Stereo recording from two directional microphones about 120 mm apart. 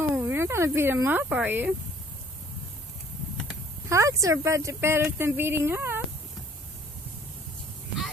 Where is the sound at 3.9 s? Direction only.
25° right (ahead or behind).